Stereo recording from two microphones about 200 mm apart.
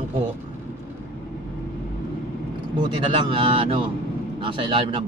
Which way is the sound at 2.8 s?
25° right (ahead or behind).